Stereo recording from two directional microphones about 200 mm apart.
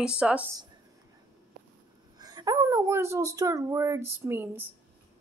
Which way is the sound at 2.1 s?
20° right (ahead or behind).